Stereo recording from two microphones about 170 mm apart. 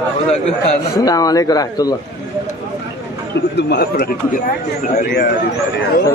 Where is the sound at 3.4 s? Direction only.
75° left (ahead or behind).